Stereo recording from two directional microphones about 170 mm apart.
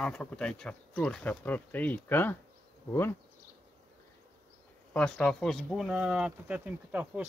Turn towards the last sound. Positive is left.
turn(degrees=-10)  # may be behind; listen again after turning